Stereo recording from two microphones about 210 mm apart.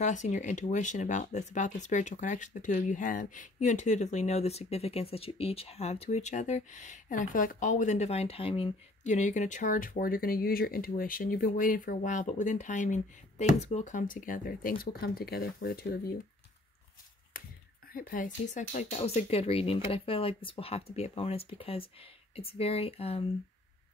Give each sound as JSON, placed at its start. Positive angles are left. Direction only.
{"t": 0.0, "sound": "speech", "side_deg": 35}
{"t": 17.9, "sound": "speech", "side_deg": 40}